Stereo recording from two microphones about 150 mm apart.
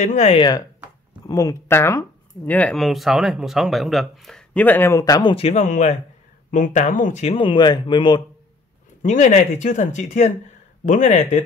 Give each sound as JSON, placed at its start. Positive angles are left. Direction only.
{"t": 0.0, "sound": "speech", "side_deg": 50}
{"t": 0.4, "sound": "speech", "side_deg": 25}
{"t": 5.3, "sound": "speech", "side_deg": 45}
{"t": 9.0, "sound": "speech", "side_deg": 55}